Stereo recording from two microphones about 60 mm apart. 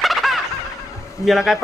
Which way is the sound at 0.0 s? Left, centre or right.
Centre.